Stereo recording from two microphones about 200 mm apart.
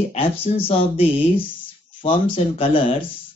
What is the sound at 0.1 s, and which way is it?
Speech, 30° left (ahead or behind).